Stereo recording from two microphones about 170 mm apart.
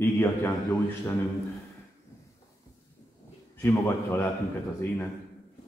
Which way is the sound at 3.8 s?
15° left (ahead or behind).